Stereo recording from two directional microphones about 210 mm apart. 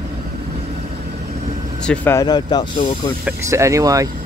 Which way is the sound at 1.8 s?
10° left (ahead or behind).